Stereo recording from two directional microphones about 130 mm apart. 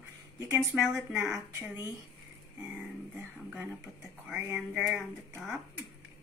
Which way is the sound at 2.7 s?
10° right (ahead or behind).